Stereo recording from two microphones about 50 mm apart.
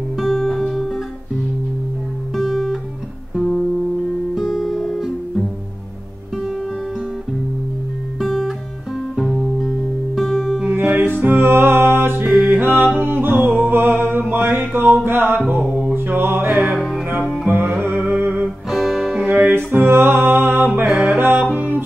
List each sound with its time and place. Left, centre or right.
0.2 s music: centre
2.3 s guitar: centre
3.3 s music: centre
4.4 s guitar: centre
6.3 s music: centre
8.4 s music: centre
10.7 s music: right
14.3 s a sound: right
14.6 s music: right
15.9 s music: right
16.7 s music: centre
17.5 s music: right
18.7 s guitar: centre
19.7 s music: right